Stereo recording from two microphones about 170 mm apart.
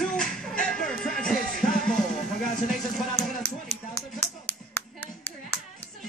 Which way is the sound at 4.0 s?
10° left (ahead or behind).